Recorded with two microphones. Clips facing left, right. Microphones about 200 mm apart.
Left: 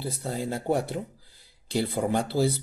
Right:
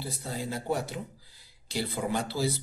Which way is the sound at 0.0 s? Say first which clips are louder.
Left 4 dB; 55° left (ahead or behind).